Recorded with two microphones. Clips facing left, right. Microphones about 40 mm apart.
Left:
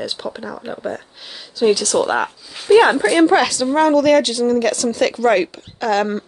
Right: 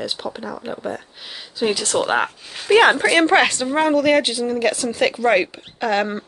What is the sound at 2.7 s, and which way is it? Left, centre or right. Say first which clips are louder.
Speech: left 2 dB; right.